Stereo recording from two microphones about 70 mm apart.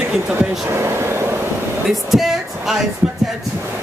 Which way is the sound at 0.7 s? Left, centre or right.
Right.